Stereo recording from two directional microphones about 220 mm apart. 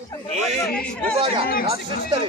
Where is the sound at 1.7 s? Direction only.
25° right (ahead or behind).